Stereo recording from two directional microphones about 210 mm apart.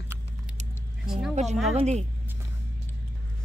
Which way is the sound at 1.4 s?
35° right (ahead or behind).